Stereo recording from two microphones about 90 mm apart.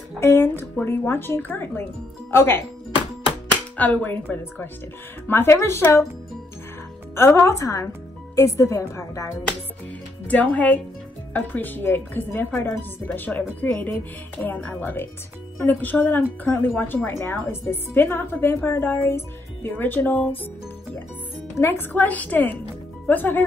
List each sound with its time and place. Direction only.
0.2 s speech: 25° left (ahead or behind)
3.7 s speech: 20° left (ahead or behind)
7.2 s a woman's voice: 25° left (ahead or behind)
10.2 s a woman's voice: 15° left (ahead or behind)
14.6 s a woman's voice: 10° left (ahead or behind)
21.5 s a woman's voice: 25° left (ahead or behind)